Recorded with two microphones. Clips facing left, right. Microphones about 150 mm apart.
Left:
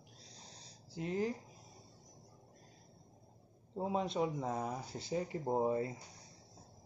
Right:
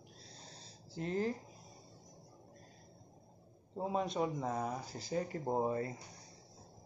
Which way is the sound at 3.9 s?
25° left (ahead or behind).